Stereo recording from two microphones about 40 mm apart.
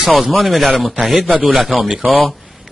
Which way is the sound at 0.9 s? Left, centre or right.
Centre.